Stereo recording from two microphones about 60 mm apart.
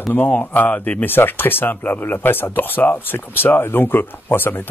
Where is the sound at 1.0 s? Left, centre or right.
Left.